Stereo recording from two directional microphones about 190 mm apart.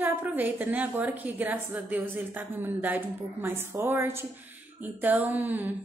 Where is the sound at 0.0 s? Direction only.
10° right (ahead or behind).